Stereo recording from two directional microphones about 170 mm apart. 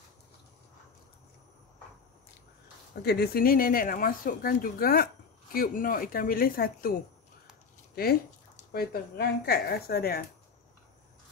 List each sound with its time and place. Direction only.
2.9 s speech: 70° left (ahead or behind)